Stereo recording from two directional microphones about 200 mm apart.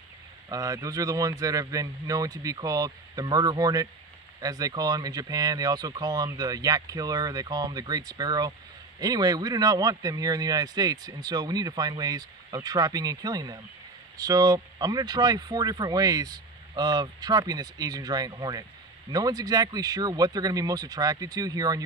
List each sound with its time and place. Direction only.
0.5 s speech: 15° right (ahead or behind)